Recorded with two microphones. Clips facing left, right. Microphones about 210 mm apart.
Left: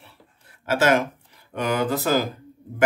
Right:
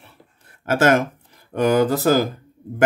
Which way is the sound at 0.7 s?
50° right (ahead or behind).